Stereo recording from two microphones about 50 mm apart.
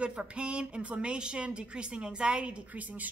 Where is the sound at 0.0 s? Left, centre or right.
Right.